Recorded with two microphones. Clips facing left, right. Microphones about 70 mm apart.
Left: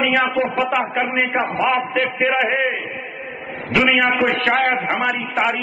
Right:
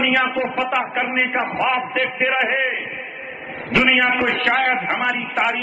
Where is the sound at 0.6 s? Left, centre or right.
Centre.